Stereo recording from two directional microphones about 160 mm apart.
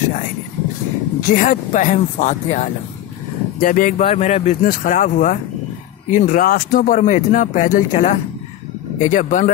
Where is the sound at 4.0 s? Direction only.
40° left (ahead or behind).